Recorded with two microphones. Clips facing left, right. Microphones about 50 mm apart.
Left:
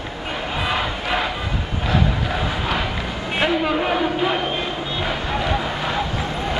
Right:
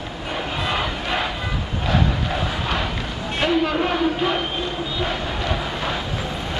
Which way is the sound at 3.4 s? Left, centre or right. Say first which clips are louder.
Even; centre.